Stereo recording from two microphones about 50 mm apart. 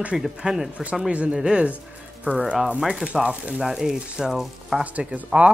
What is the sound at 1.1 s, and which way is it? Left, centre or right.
Speech, right.